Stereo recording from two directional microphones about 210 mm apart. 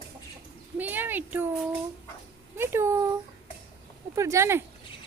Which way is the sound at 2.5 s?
10° right (ahead or behind).